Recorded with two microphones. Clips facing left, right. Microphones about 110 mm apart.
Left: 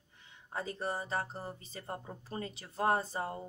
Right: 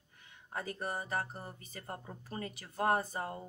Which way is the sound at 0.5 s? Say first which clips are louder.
Left 2 dB; 25° left (ahead or behind).